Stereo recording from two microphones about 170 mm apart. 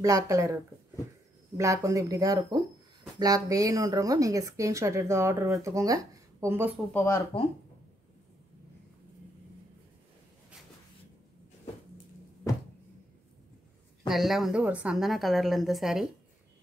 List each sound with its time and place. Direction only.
0.0 s speech: 20° right (ahead or behind)
1.6 s speech: 20° right (ahead or behind)
6.9 s speech: 10° left (ahead or behind)
14.0 s a woman's voice: centre (ahead or behind)